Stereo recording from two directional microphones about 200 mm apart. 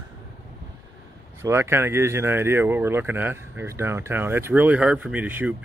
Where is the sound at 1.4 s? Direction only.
10° right (ahead or behind).